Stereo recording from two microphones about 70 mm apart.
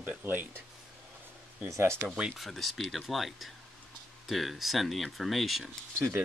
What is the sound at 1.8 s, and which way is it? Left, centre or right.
Speech, right.